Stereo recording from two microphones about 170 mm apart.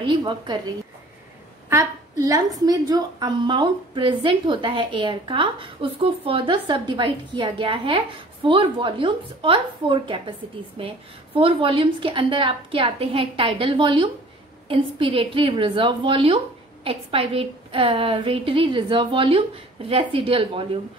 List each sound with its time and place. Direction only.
0.0 s a woman's voice: 30° right (ahead or behind)
1.7 s a woman's voice: 20° right (ahead or behind)